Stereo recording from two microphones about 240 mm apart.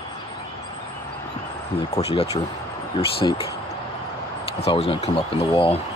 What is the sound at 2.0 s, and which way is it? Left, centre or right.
Speech, left.